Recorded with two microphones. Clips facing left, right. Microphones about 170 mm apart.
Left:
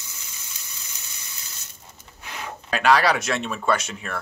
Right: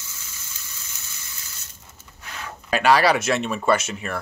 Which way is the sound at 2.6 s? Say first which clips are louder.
Right 2 dB; centre (ahead or behind).